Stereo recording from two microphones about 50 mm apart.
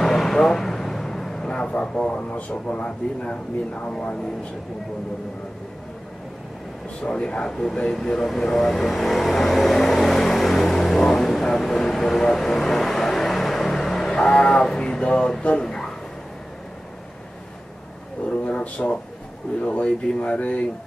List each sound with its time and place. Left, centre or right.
0.0 s speech: centre; by 4.2 s left
7.0 s speech: left
14.1 s speech: left
15.6 s a sound: centre
18.5 s speech: left